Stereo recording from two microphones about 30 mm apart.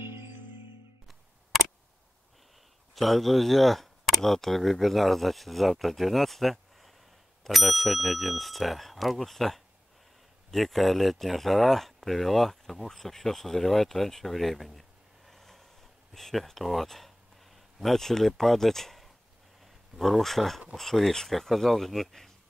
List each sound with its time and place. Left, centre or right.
2.9 s speech: centre
17.5 s a sound: centre
17.9 s speech: centre